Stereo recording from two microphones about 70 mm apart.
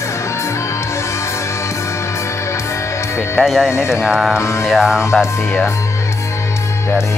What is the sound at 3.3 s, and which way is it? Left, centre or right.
Speech, centre.